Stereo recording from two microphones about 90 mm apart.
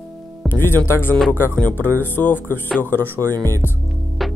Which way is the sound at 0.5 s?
25° left (ahead or behind).